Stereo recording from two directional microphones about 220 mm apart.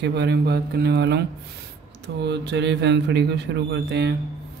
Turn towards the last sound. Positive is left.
turn(degrees=-50)  # may be behind; listen again after turning